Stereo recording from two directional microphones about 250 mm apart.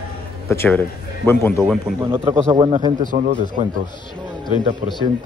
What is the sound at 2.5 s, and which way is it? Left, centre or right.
Speech, centre.